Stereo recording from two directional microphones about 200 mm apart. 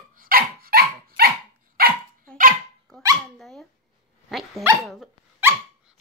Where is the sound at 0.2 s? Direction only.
45° right (ahead or behind).